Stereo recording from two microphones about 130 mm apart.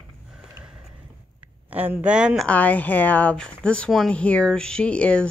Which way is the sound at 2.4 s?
10° left (ahead or behind).